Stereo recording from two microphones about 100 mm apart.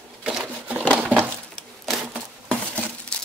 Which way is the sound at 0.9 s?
20° right (ahead or behind).